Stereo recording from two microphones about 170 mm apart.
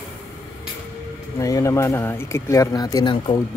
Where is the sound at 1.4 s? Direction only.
20° left (ahead or behind).